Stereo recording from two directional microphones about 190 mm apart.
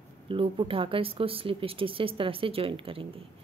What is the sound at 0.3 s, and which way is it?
Speech, 25° right (ahead or behind).